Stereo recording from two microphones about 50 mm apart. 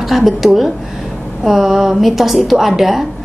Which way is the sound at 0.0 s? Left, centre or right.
Centre.